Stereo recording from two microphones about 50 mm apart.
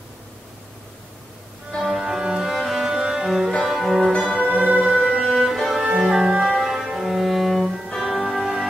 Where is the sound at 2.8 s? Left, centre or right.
Centre.